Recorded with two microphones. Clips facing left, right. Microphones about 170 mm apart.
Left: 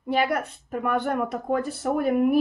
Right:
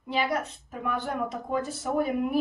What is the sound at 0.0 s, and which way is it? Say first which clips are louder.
A woman's voice: left 4 dB; 55° left (ahead or behind).